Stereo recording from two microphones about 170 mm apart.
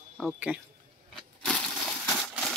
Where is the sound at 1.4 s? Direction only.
5° left (ahead or behind).